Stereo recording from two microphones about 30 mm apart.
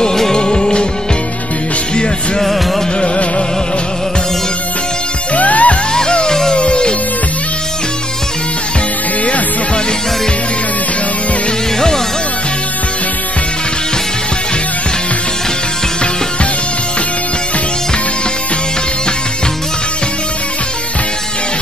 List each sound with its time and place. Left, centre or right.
0.1 s music: centre
0.4 s music: left
5.3 s music: left
5.9 s music: left
6.5 s music: left